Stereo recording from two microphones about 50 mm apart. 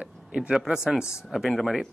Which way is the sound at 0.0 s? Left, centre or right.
Centre.